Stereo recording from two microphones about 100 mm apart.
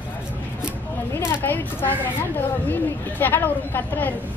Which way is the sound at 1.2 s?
20° left (ahead or behind).